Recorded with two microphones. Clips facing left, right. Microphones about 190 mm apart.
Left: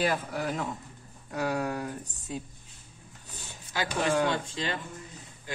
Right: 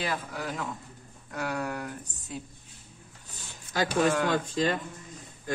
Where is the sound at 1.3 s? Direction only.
30° left (ahead or behind).